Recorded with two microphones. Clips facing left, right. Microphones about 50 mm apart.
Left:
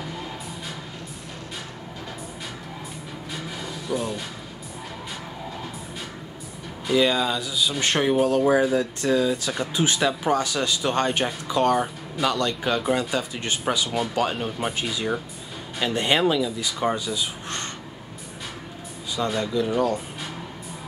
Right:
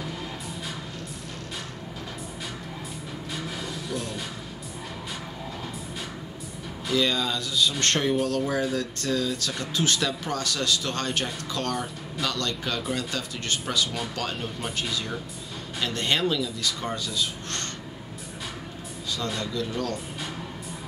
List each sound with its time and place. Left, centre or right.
3.3 s a sound: centre
6.9 s speech: centre
13.8 s speech: centre
19.1 s speech: centre